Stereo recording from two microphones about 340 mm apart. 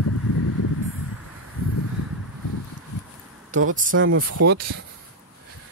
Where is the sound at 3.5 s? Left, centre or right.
Right.